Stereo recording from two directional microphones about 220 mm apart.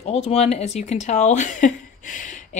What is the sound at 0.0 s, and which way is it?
A woman's voice, 25° left (ahead or behind).